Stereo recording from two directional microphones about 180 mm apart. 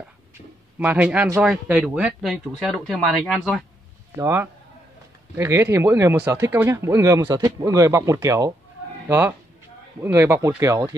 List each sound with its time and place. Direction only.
0.7 s speech: 10° right (ahead or behind)
9.9 s speech: 15° right (ahead or behind)